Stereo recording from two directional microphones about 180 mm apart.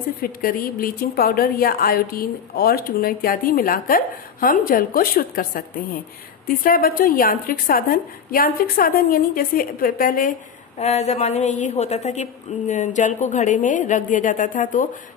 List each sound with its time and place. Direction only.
0.2 s a woman's voice: 55° left (ahead or behind)
10.8 s a woman's voice: 40° left (ahead or behind)